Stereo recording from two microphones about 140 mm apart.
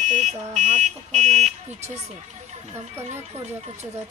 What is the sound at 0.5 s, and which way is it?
Car alarm, 55° right (ahead or behind).